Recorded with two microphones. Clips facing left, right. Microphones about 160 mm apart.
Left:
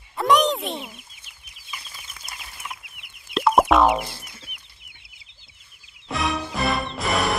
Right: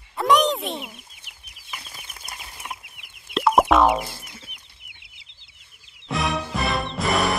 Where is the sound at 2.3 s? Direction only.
35° right (ahead or behind).